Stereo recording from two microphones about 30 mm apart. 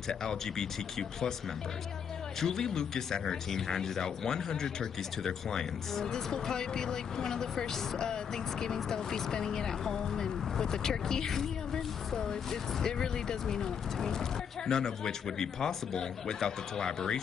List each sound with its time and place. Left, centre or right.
0.1 s speech: left
2.4 s speech: centre